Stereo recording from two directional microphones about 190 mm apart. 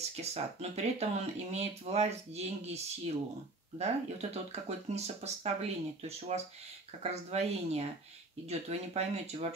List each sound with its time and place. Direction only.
0.1 s speech: 35° right (ahead or behind)